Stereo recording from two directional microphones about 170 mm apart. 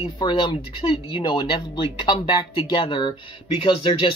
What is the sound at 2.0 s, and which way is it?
Speech, 25° left (ahead or behind).